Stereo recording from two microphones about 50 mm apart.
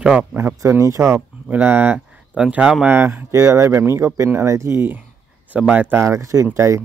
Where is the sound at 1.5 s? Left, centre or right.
Right.